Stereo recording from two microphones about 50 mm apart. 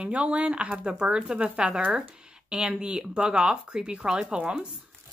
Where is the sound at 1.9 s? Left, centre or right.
Centre.